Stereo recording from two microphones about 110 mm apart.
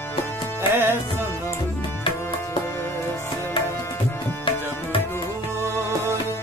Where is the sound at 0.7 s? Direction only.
20° right (ahead or behind).